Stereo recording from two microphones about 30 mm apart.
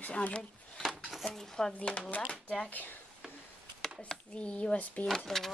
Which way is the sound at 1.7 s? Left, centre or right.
Left.